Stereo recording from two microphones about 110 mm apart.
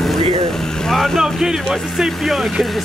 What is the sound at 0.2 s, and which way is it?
Vehicle, 45° right (ahead or behind).